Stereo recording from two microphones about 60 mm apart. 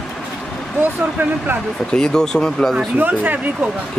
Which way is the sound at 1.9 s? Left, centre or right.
Centre.